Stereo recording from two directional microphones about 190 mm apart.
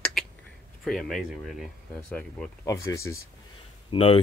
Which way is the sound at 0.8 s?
Centre (ahead or behind).